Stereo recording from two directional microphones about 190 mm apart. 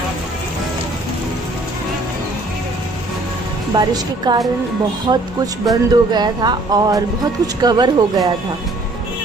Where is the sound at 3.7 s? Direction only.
20° right (ahead or behind).